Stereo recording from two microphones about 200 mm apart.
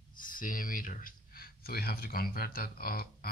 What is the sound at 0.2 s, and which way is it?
Speech, 45° left (ahead or behind).